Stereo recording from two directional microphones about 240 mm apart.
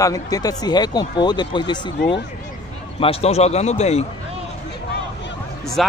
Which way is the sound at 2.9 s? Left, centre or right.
Left.